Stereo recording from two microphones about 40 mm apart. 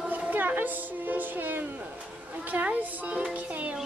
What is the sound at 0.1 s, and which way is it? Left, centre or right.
Music, right.